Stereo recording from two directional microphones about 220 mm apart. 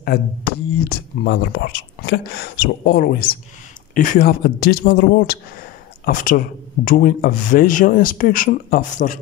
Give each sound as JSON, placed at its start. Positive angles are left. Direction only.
{"t": 0.0, "sound": "a man's voice", "side_deg": 45}